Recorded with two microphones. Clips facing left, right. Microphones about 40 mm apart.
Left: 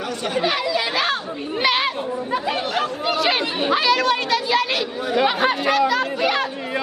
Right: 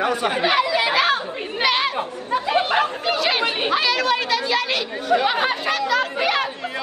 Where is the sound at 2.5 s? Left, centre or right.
Right.